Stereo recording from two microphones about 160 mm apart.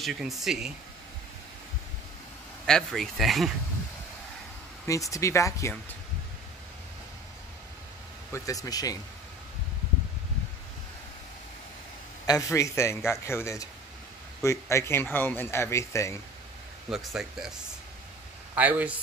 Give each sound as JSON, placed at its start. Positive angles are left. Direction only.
{"t": 0.0, "sound": "speech", "side_deg": 0}
{"t": 2.6, "sound": "speech", "side_deg": 0}
{"t": 4.8, "sound": "speech", "side_deg": 20}
{"t": 8.3, "sound": "speech", "side_deg": 20}
{"t": 12.3, "sound": "speech", "side_deg": 20}
{"t": 16.9, "sound": "speech", "side_deg": 0}
{"t": 18.5, "sound": "speech", "side_deg": -10}